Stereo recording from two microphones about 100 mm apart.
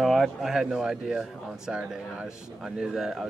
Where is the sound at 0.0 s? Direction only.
Centre (ahead or behind).